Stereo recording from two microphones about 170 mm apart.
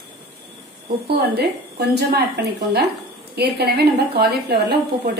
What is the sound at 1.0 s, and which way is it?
A woman's voice, 70° right (ahead or behind).